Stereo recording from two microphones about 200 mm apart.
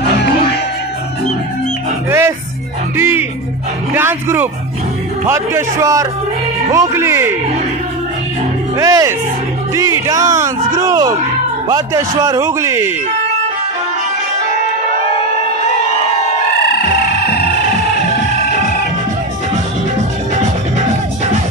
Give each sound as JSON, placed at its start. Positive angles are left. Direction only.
{"t": 2.0, "sound": "music", "side_deg": -10}
{"t": 3.9, "sound": "speech", "side_deg": -10}
{"t": 8.7, "sound": "speech", "side_deg": -15}
{"t": 15.0, "sound": "a sound", "side_deg": 30}